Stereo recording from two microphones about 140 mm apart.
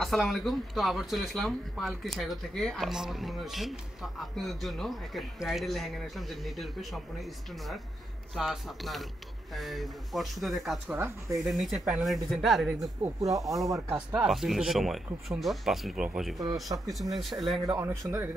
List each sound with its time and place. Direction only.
0.0 s speech: centre (ahead or behind)
10.9 s speech: 15° right (ahead or behind)
11.4 s speech: centre (ahead or behind)
13.2 s speech: 25° right (ahead or behind)
13.9 s speech: 5° right (ahead or behind)
16.6 s speech: 25° right (ahead or behind)
16.9 s speech: centre (ahead or behind)
17.6 s speech: 20° right (ahead or behind)